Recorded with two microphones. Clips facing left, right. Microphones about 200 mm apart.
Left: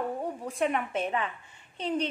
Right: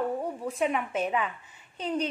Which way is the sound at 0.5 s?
Centre (ahead or behind).